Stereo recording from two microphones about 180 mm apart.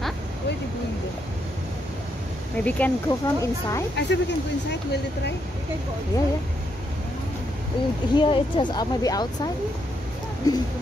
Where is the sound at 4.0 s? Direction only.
75° left (ahead or behind).